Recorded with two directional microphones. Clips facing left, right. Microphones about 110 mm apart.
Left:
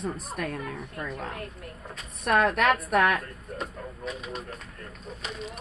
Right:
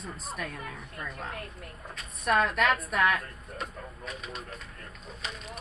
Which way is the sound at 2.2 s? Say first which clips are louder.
Left 3 dB; 60° left (ahead or behind).